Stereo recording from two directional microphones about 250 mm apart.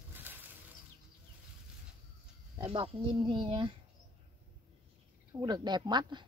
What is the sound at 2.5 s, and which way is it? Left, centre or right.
Speech, centre.